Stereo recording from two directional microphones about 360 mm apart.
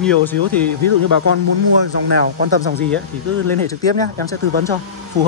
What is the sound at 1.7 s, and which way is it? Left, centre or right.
Speech, left.